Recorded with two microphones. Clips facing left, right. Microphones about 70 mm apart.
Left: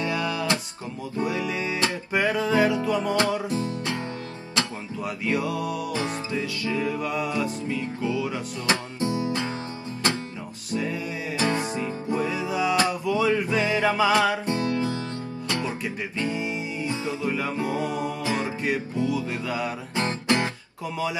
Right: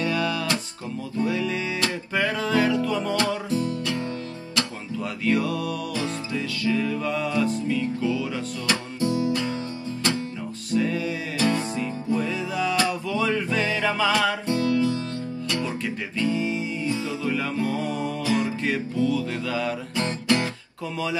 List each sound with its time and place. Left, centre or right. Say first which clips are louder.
0.0 s music: right 1 dB; centre
5.0 s music: right 2 dB; left
10.7 s music: right 4 dB; centre